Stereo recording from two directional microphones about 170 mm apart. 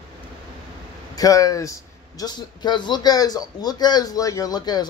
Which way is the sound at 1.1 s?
20° left (ahead or behind).